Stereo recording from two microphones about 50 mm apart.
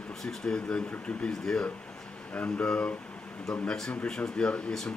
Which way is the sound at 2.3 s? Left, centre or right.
Left.